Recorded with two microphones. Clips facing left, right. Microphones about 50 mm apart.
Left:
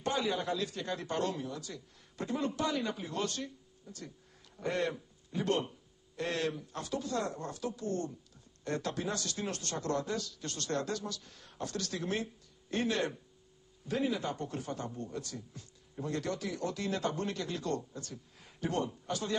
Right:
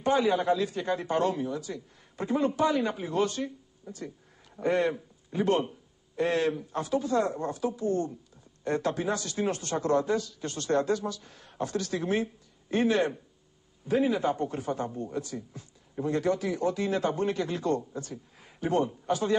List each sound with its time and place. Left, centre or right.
0.0 s a man's voice: centre